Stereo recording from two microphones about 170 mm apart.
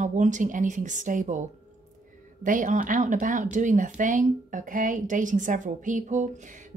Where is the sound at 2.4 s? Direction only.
50° right (ahead or behind).